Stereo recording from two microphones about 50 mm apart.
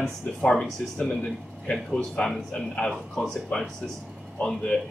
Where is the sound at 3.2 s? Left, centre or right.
Left.